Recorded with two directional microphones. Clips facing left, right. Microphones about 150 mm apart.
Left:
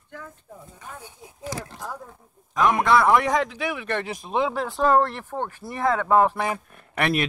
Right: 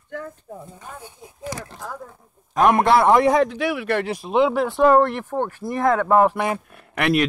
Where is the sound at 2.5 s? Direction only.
55° right (ahead or behind).